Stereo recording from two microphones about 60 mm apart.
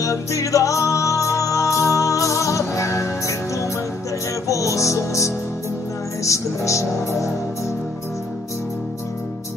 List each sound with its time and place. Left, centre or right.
0.0 s music: left
6.2 s speech: left